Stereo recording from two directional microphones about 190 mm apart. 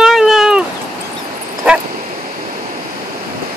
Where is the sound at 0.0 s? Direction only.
Centre (ahead or behind).